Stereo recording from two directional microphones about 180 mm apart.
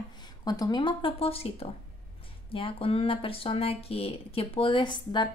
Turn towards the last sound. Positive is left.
turn(degrees=25)  # may be behind; listen again after turning